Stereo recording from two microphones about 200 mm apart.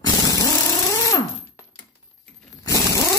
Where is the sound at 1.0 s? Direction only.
15° left (ahead or behind).